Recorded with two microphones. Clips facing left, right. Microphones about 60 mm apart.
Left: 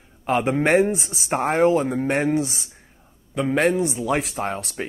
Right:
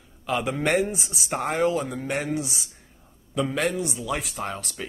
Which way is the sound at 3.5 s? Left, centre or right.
Left.